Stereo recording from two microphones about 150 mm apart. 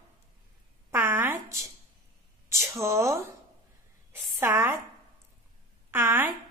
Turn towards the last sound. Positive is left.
turn(degrees=-15)  # may be behind; listen again after turning